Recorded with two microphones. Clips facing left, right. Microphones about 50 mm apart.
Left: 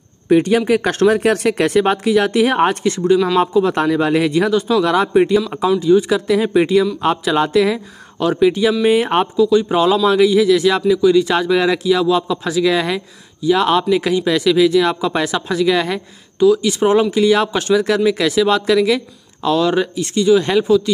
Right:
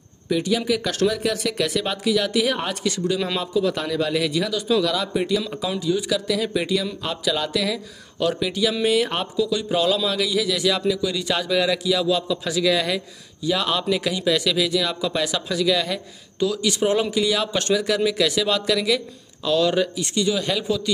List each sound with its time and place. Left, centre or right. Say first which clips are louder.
0.3 s a man's voice: left 9 dB; left
16.3 s a man's voice: left 9 dB; centre